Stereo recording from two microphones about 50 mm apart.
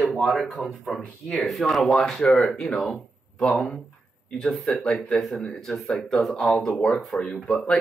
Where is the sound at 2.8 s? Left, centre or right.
Centre.